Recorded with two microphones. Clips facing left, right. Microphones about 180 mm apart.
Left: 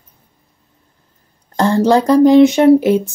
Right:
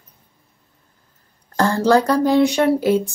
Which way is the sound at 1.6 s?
20° left (ahead or behind).